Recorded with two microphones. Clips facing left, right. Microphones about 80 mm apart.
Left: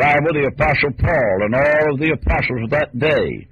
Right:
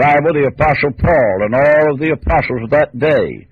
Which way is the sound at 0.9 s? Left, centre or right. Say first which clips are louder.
Right 6 dB; right.